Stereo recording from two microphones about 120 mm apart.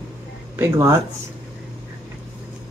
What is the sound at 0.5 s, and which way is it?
Speech, 25° right (ahead or behind).